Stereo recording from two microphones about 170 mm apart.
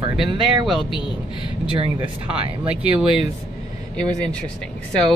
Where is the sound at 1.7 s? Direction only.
35° right (ahead or behind).